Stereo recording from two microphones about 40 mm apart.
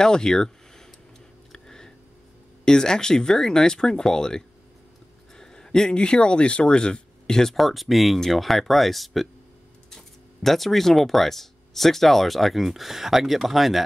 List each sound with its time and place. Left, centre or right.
0.0 s speech: centre
1.5 s a sound: centre
2.6 s speech: centre
7.5 s speech: centre